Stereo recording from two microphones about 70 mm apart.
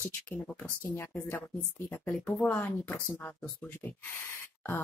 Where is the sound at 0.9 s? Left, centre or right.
Left.